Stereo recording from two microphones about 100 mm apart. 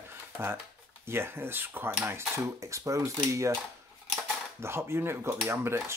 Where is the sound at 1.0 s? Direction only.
25° right (ahead or behind).